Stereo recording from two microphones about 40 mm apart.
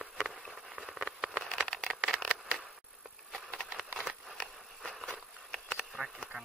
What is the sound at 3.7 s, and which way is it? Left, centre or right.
Wood, centre.